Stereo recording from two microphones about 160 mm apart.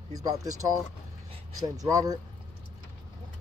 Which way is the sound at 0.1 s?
25° right (ahead or behind).